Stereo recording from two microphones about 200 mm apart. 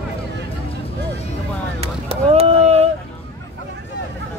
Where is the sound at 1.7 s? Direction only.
30° right (ahead or behind).